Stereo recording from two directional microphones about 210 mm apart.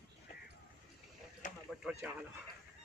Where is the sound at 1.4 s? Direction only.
40° left (ahead or behind).